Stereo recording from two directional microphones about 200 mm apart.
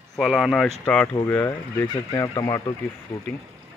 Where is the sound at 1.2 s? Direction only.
10° left (ahead or behind).